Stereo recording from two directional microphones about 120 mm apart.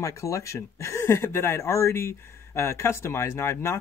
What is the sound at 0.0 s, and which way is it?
Speech, 25° left (ahead or behind).